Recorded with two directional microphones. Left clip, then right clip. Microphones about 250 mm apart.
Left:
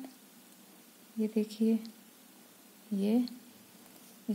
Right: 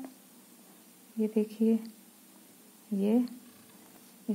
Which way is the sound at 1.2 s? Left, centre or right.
Left.